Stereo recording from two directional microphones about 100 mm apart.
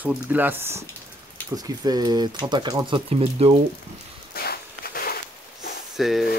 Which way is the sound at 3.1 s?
70° right (ahead or behind).